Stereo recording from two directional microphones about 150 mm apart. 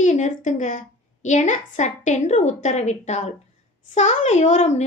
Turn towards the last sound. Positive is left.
turn(degrees=50)  # may be behind; listen again after turning